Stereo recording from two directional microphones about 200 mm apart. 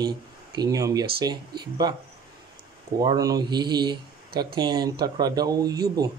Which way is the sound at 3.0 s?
20° right (ahead or behind).